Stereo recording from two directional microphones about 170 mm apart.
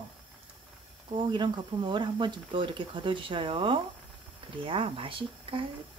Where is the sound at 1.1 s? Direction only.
25° right (ahead or behind).